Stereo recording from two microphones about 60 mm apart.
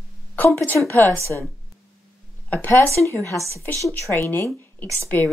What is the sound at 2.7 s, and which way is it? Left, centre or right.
Speech, left.